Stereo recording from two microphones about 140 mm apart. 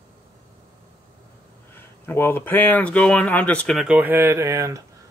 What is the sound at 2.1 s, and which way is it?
Speech, 15° left (ahead or behind).